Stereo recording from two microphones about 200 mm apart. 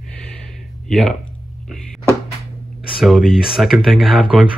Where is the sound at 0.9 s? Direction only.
5° left (ahead or behind).